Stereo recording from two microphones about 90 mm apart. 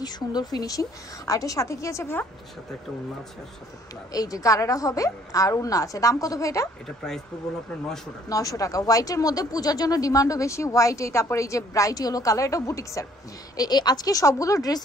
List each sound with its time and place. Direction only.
0.0 s speech: 50° left (ahead or behind); by 2.2 s 30° left (ahead or behind)
4.1 s speech: 45° left (ahead or behind)
8.3 s speech: 40° left (ahead or behind)
13.6 s speech: 50° left (ahead or behind)